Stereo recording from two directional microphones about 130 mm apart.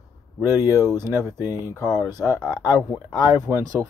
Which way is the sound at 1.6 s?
30° left (ahead or behind).